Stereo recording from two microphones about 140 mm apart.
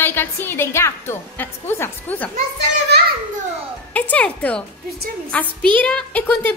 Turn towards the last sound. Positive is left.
turn(degrees=10)  # may be behind; listen again after turning